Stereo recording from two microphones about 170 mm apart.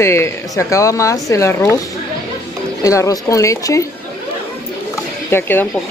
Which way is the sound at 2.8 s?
20° left (ahead or behind).